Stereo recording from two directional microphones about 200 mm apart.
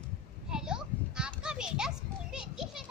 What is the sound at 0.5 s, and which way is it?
Children playing, 5° right (ahead or behind).